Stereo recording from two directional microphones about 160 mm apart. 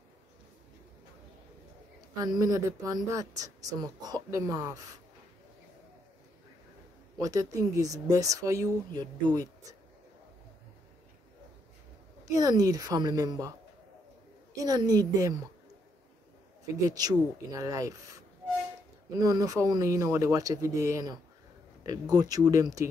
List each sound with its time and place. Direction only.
2.1 s speech: 25° right (ahead or behind)
7.2 s speech: 20° right (ahead or behind)
12.3 s speech: 25° right (ahead or behind)
14.5 s speech: 25° right (ahead or behind)
16.8 s speech: 25° right (ahead or behind)